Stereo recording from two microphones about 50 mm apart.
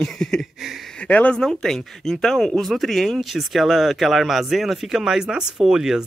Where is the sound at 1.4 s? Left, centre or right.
Centre.